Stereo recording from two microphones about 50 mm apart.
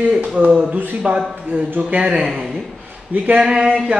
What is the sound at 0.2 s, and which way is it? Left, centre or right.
Speech, right.